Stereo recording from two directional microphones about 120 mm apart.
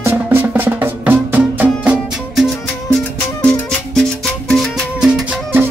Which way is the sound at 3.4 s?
5° left (ahead or behind).